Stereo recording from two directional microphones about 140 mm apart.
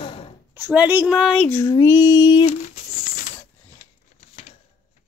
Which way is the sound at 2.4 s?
70° left (ahead or behind).